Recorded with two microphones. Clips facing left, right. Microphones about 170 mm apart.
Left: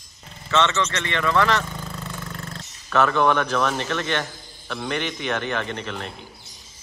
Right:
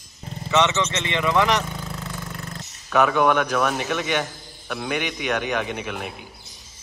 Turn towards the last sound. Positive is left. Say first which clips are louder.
# right 1 dB
turn(degrees=-10)  # may be behind; listen again after turning